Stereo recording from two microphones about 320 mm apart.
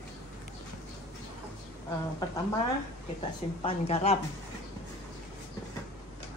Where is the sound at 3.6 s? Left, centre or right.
Centre.